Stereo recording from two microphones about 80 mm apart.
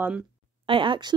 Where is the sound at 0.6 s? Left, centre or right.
Right.